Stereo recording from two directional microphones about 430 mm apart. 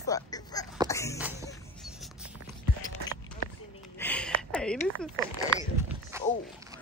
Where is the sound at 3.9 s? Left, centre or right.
Centre.